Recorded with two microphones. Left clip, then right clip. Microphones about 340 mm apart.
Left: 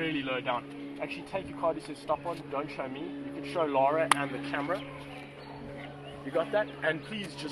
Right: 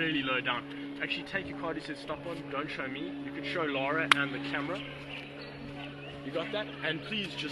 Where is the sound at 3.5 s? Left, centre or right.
Centre.